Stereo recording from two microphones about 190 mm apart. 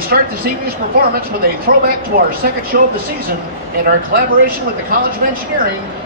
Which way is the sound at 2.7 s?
55° right (ahead or behind).